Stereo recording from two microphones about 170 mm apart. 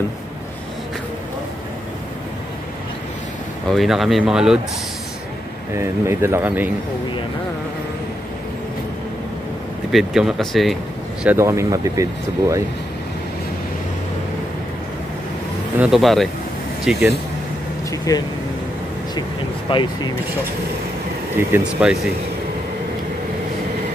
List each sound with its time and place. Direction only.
3.6 s speech: centre (ahead or behind)
5.8 s speech: 15° right (ahead or behind)
9.8 s speech: 5° right (ahead or behind)
11.2 s speech: 15° right (ahead or behind)
15.8 s speech: centre (ahead or behind)
18.1 s speech: 20° left (ahead or behind)
19.7 s speech: 30° left (ahead or behind)
21.4 s speech: 10° right (ahead or behind)